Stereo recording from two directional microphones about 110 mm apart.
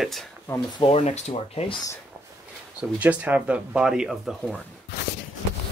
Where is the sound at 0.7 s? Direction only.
55° left (ahead or behind).